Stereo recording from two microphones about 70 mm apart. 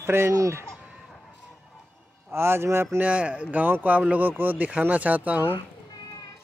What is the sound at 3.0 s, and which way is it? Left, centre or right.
Speech, centre.